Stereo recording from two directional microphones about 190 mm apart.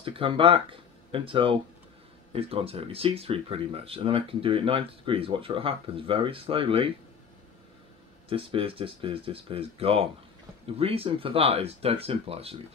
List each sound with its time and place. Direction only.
0.0 s speech: 30° right (ahead or behind)
8.3 s speech: 30° right (ahead or behind)